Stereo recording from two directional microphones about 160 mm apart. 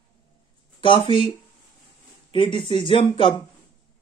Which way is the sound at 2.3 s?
35° left (ahead or behind).